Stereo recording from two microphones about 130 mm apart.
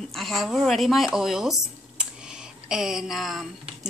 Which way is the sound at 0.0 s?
Centre (ahead or behind).